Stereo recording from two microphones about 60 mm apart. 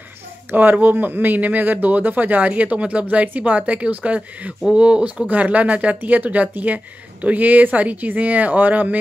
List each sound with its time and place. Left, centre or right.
0.5 s speech: right